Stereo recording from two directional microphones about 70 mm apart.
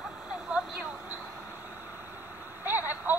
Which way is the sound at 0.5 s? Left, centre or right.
Centre.